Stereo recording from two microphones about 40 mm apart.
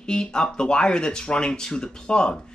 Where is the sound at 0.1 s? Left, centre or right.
Left.